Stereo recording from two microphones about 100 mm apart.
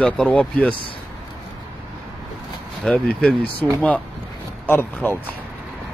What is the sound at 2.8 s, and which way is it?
Speech, 10° left (ahead or behind).